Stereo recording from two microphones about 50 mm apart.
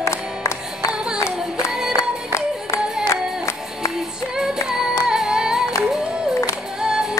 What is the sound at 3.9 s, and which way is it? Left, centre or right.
Female singing, centre.